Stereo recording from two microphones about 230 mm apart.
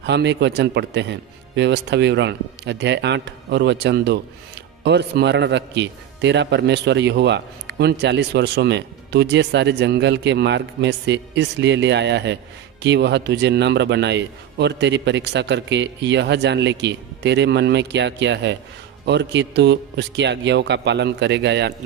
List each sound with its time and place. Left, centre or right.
0.0 s a man's voice: right